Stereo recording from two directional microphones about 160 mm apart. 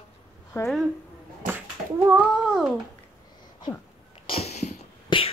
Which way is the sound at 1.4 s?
55° right (ahead or behind).